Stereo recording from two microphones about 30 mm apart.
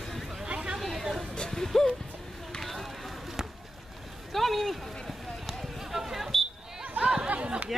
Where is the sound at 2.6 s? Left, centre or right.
Centre.